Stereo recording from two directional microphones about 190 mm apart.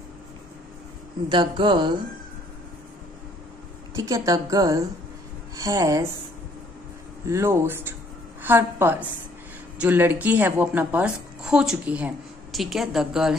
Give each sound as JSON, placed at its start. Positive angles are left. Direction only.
{"t": 1.3, "sound": "speech", "side_deg": -25}
{"t": 3.9, "sound": "a woman's voice", "side_deg": -15}
{"t": 7.2, "sound": "a woman's voice", "side_deg": -15}